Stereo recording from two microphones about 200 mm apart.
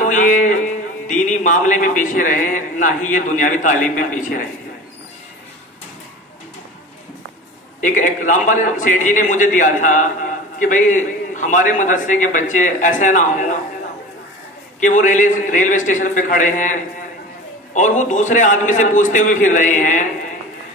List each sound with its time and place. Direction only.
0.0 s a man's voice: 40° left (ahead or behind)
7.8 s a man's voice: 40° left (ahead or behind)
14.8 s a man's voice: 40° left (ahead or behind)